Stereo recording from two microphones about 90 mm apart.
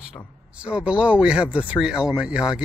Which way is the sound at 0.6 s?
10° right (ahead or behind).